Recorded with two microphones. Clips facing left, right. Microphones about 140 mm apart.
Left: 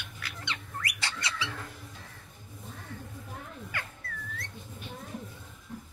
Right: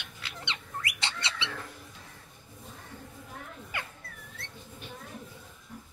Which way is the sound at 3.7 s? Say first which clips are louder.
Right 1 dB; 20° right (ahead or behind).